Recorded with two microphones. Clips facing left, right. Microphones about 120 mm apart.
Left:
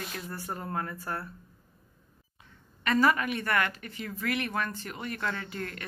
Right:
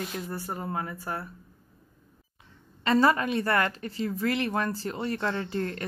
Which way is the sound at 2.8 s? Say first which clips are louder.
Right 3 dB; 30° right (ahead or behind).